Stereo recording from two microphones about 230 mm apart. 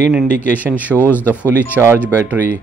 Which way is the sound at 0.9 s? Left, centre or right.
Centre.